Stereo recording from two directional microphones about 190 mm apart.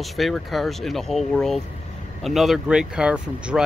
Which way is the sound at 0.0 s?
Centre (ahead or behind).